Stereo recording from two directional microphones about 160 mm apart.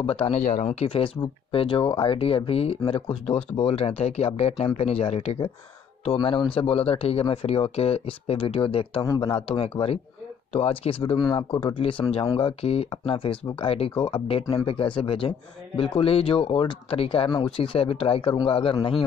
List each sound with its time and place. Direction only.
0.0 s speech: 35° left (ahead or behind)
9.0 s speech: 20° left (ahead or behind)
9.3 s speech: 35° left (ahead or behind)